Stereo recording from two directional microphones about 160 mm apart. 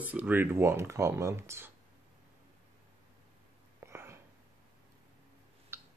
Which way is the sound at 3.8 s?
15° right (ahead or behind).